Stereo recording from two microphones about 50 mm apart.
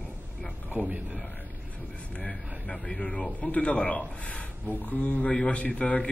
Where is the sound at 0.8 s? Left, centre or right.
Right.